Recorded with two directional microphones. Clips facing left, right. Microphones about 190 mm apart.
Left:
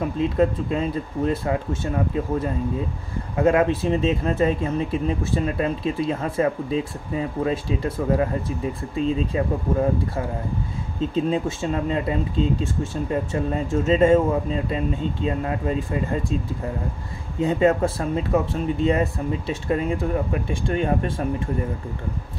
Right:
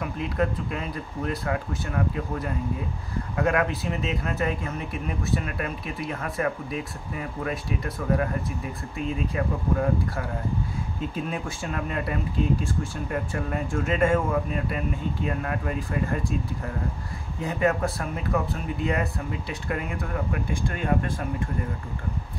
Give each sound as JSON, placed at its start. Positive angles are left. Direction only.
{"t": 0.0, "sound": "speech", "side_deg": 25}
{"t": 17.4, "sound": "speech", "side_deg": 25}